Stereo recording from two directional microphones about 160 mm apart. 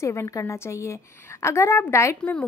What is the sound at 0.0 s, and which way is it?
Speech, 20° left (ahead or behind).